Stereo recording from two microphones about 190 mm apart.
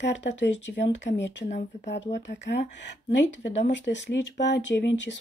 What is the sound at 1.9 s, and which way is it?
Speech, 65° left (ahead or behind).